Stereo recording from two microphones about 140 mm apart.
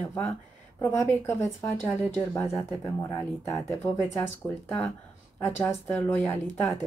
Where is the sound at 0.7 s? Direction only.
15° left (ahead or behind).